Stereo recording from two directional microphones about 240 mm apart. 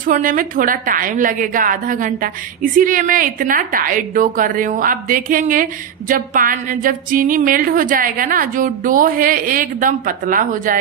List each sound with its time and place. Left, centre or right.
0.0 s a woman's voice: right